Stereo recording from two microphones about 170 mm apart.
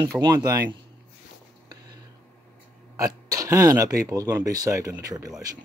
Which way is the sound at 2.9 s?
20° right (ahead or behind).